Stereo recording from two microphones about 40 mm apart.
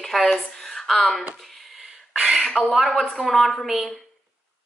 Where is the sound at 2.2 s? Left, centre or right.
Centre.